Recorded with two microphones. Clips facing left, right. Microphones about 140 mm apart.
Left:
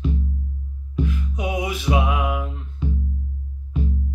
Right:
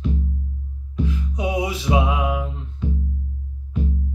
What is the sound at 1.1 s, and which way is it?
Music, 30° right (ahead or behind).